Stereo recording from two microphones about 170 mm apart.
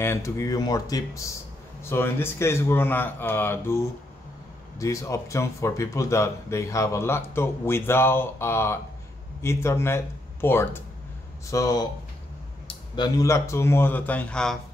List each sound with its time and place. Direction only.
0.0 s speech: 15° left (ahead or behind)